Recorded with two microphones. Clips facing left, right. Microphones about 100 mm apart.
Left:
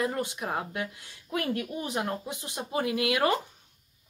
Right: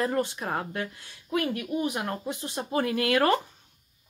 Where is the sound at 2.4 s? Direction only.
15° left (ahead or behind).